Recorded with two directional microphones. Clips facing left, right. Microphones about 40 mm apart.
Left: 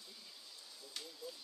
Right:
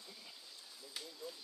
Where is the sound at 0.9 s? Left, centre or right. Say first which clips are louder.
Right 1 dB; centre.